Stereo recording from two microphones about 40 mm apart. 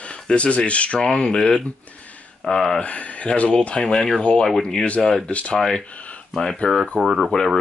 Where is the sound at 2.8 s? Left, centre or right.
Left.